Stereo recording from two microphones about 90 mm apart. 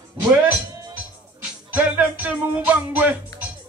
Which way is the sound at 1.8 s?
15° right (ahead or behind).